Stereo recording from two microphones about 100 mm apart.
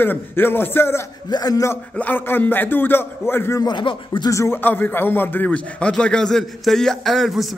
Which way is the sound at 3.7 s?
50° left (ahead or behind).